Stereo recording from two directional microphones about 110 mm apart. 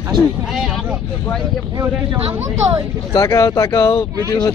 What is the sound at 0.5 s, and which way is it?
Speech, 5° right (ahead or behind).